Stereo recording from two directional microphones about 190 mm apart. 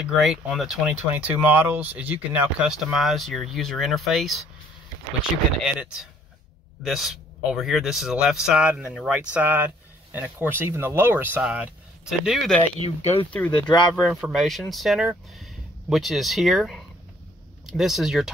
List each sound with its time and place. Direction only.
0.0 s speech: centre (ahead or behind)
5.7 s speech: 5° right (ahead or behind)
12.8 s speech: 30° left (ahead or behind)
14.0 s speech: centre (ahead or behind)